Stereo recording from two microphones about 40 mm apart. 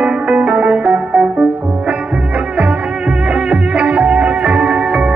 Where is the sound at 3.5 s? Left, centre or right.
Right.